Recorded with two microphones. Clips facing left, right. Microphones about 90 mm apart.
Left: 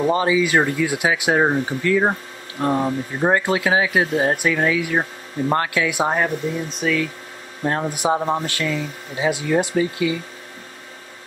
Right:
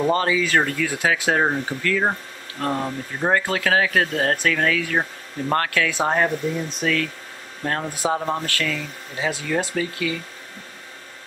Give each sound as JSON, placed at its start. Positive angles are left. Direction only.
{"t": 0.0, "sound": "speech", "side_deg": 10}
{"t": 7.6, "sound": "speech", "side_deg": 20}